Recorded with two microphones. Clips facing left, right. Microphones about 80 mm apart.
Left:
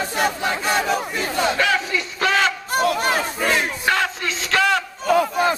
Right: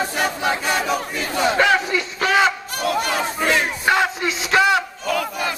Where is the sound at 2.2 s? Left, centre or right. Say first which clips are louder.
Right 2 dB; centre.